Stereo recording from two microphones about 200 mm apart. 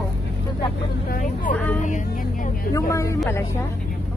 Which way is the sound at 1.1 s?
40° left (ahead or behind).